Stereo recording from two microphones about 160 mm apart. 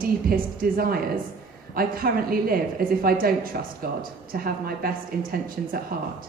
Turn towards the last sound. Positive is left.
turn(degrees=-65)  # may be behind; listen again after turning